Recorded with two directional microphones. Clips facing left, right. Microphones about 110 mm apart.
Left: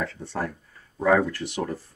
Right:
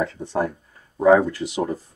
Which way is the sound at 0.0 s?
15° right (ahead or behind).